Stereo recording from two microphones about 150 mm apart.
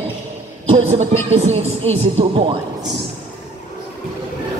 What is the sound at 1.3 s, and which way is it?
Speech, 45° right (ahead or behind).